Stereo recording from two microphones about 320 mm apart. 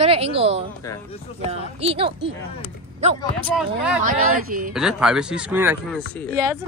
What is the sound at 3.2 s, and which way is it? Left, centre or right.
Speech, centre.